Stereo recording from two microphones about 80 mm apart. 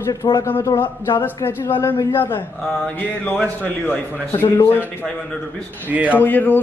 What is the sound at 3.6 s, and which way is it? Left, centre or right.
Speech, left.